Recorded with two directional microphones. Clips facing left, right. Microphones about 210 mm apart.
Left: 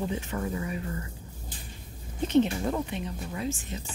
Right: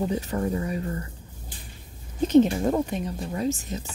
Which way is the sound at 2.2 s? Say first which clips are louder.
Right 5 dB; 40° right (ahead or behind).